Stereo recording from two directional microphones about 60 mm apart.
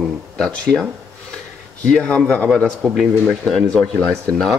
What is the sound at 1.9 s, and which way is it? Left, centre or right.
Speech, centre.